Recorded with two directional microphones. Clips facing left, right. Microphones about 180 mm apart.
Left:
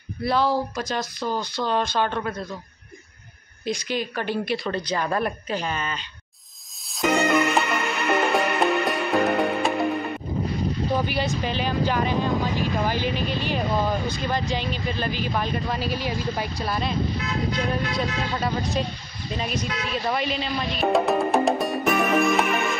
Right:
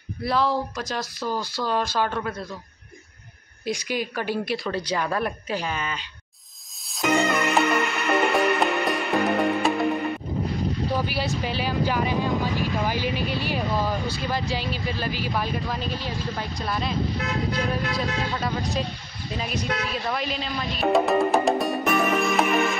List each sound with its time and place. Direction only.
0.2 s speech: centre (ahead or behind)
3.6 s a woman's voice: 10° right (ahead or behind)
6.9 s music: centre (ahead or behind)
11.4 s a woman's voice: 10° right (ahead or behind)
15.9 s speech: 15° left (ahead or behind)
16.4 s speech: centre (ahead or behind)
19.9 s music: centre (ahead or behind)